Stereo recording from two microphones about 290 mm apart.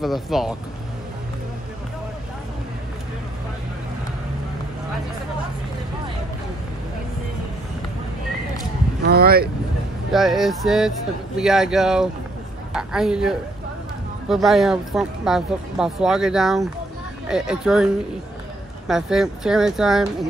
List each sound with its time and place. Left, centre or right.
0.0 s a woman's voice: centre
9.0 s speech: right
10.1 s a woman's voice: centre
18.9 s a woman's voice: centre